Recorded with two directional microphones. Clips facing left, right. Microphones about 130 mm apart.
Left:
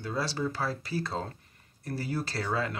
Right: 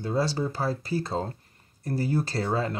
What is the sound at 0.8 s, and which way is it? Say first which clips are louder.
Speech: right 4 dB; 40° right (ahead or behind).